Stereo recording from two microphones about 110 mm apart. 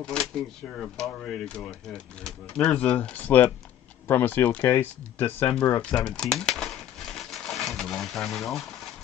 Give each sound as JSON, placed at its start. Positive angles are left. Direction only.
{"t": 0.0, "sound": "speech", "side_deg": 5}
{"t": 5.8, "sound": "crumpling", "side_deg": 10}